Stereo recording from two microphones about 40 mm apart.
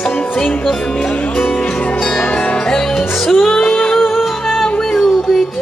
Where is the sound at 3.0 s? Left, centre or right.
Centre.